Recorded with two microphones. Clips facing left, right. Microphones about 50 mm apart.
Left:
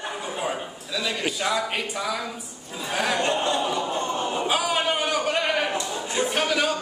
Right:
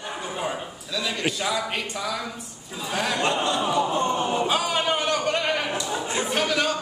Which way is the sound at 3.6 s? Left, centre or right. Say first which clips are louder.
Right 3 dB; right.